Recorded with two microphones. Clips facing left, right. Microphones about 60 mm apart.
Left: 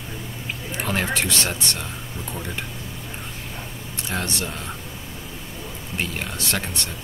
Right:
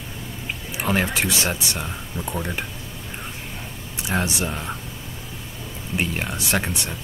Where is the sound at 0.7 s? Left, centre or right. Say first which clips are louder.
Right 2 dB; centre.